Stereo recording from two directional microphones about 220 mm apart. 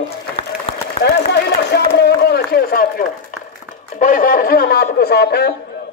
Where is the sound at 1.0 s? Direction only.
50° left (ahead or behind).